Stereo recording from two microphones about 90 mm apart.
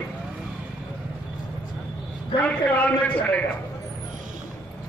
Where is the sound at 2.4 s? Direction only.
15° left (ahead or behind).